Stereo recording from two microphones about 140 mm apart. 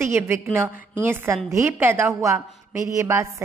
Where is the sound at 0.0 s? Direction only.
20° right (ahead or behind).